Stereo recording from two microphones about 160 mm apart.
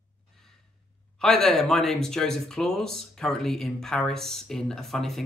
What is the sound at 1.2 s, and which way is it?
Speech, centre (ahead or behind).